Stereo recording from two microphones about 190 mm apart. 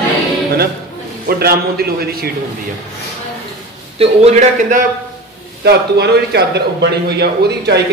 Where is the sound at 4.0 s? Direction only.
35° right (ahead or behind).